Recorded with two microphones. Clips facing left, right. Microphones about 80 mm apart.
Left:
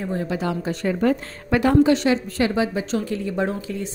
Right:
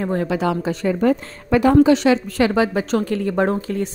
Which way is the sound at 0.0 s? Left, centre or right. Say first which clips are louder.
Right 5 dB; right.